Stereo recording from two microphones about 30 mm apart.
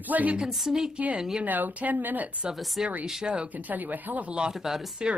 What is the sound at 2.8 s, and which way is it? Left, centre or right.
Speech, centre.